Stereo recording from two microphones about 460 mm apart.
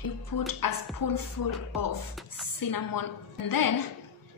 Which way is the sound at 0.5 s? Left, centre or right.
Left.